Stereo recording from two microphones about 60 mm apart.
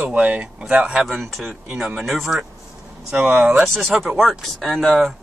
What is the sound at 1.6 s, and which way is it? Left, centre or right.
Speech, centre.